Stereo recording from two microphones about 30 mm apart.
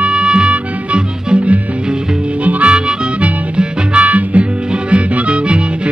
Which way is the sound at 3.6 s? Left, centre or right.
Right.